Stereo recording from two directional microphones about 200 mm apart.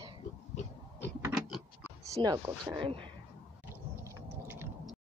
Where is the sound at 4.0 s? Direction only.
10° right (ahead or behind).